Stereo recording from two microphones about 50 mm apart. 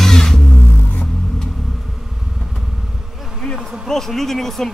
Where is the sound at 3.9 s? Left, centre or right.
Centre.